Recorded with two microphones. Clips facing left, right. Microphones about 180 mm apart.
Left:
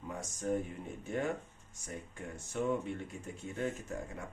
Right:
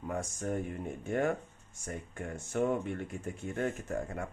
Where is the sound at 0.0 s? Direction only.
55° right (ahead or behind).